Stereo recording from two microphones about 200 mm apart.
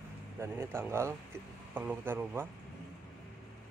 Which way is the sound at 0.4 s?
10° right (ahead or behind).